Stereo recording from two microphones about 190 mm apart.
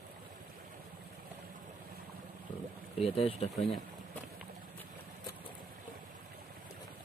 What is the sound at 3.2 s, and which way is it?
Speech, 30° left (ahead or behind).